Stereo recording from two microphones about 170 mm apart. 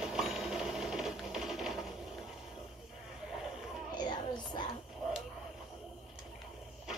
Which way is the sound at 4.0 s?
25° left (ahead or behind).